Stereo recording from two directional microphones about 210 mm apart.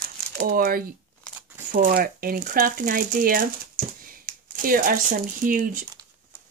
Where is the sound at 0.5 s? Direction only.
45° right (ahead or behind).